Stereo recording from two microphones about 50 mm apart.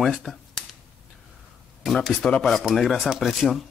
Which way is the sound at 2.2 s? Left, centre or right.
Centre.